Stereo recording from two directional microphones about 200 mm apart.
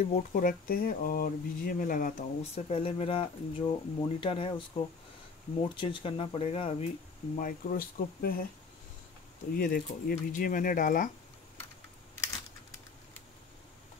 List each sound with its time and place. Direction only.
0.0 s speech: 40° left (ahead or behind)
7.3 s speech: 45° left (ahead or behind)
9.6 s speech: 45° left (ahead or behind)